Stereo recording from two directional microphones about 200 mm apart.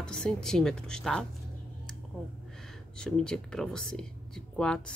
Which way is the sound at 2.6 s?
Centre (ahead or behind).